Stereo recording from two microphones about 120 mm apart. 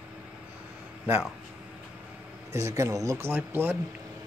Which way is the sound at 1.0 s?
10° right (ahead or behind).